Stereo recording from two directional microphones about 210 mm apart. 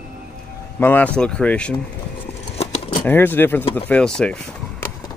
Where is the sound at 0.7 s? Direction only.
10° left (ahead or behind).